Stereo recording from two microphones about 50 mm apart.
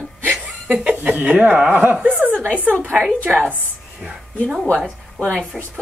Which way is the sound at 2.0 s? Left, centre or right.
Right.